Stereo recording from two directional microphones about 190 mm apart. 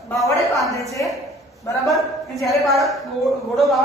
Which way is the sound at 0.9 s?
15° left (ahead or behind).